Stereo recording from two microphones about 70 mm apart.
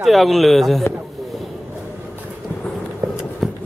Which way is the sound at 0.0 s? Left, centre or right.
Centre.